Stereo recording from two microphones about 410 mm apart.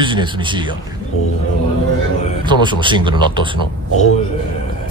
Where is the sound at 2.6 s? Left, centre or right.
Centre.